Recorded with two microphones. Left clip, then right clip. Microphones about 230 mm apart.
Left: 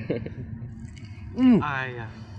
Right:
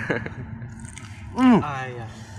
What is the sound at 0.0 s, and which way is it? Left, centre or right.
Speech, centre.